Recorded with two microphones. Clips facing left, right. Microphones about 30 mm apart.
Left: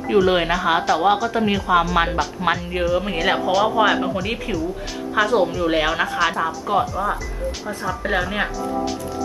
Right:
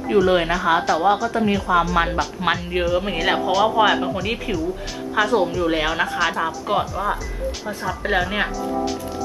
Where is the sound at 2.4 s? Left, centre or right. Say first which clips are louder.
Even; centre.